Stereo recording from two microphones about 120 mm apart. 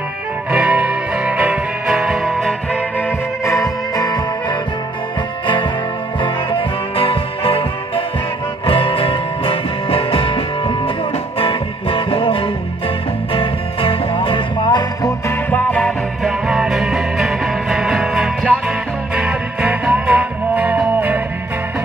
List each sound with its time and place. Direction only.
0.5 s music: 10° right (ahead or behind)
3.4 s music: 30° left (ahead or behind)
6.2 s music: 45° left (ahead or behind)
15.5 s music: 10° left (ahead or behind)
16.3 s music: 5° right (ahead or behind)